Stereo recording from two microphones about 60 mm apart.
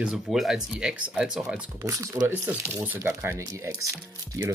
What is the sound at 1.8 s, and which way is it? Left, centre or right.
Speech, right.